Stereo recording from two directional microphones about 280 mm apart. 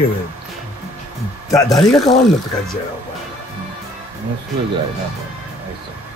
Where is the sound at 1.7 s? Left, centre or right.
Centre.